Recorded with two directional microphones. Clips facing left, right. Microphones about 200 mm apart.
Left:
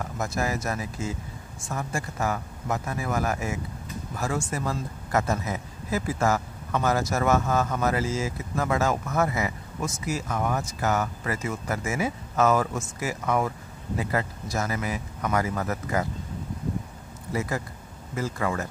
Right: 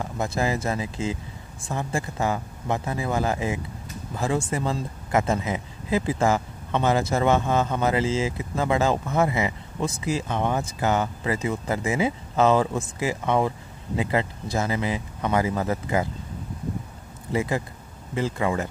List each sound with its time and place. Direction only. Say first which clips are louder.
0.0 s speech: right 3 dB; 25° right (ahead or behind)
11.8 s speech: right 4 dB; 15° right (ahead or behind)
12.4 s speech: right 3 dB; 25° right (ahead or behind)
17.3 s speech: right 4 dB; 20° right (ahead or behind)